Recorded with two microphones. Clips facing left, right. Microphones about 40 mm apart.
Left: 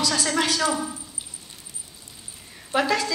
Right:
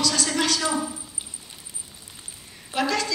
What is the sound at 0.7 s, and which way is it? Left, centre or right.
Speech, centre.